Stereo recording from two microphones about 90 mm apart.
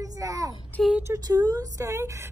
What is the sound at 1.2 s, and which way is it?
A child's voice, 45° right (ahead or behind).